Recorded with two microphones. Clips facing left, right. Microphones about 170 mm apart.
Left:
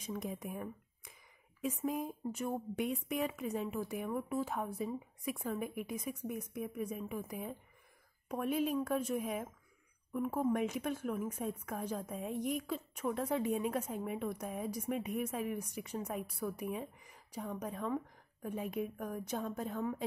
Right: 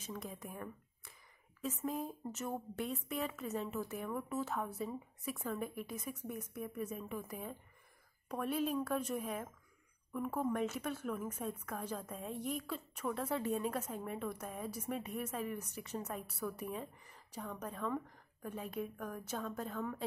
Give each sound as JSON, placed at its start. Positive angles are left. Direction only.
{"t": 0.0, "sound": "a woman's voice", "side_deg": 10}